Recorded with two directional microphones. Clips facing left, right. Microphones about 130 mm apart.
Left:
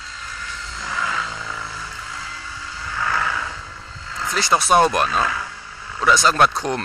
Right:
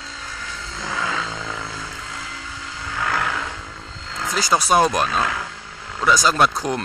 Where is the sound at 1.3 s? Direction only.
90° right.